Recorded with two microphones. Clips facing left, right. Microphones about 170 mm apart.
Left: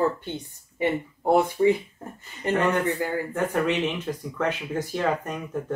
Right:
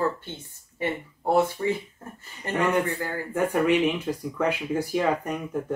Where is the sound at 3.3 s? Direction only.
10° right (ahead or behind).